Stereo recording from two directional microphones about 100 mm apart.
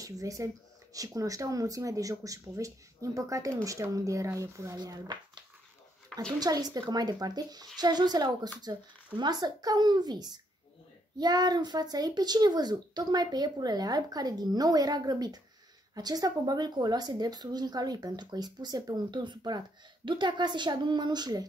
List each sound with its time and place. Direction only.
0.0 s speech: 35° right (ahead or behind)
4.7 s speech: 45° right (ahead or behind)
6.1 s a sound: 10° left (ahead or behind)
6.4 s a child's voice: 40° right (ahead or behind)